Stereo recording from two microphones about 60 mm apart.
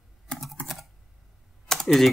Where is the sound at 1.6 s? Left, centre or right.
Centre.